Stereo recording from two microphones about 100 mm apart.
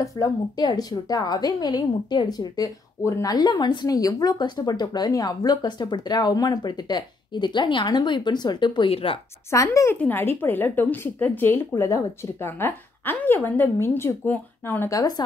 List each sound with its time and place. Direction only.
0.0 s a woman's voice: 40° left (ahead or behind)
8.9 s speech: 65° left (ahead or behind)
9.5 s speech: 30° left (ahead or behind)
9.9 s a woman's voice: 20° left (ahead or behind)
14.9 s speech: 40° left (ahead or behind)